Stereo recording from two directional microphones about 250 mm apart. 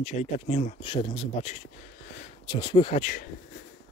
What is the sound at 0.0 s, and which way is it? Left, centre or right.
Speech, left.